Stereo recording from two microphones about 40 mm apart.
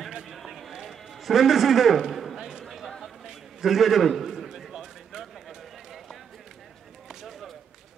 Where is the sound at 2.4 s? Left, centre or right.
Centre.